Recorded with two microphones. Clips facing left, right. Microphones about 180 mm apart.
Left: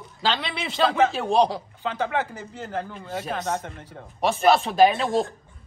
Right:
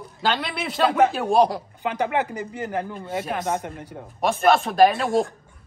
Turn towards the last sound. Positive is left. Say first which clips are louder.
# right 1 dB
turn(degrees=-5)  # may be behind; listen again after turning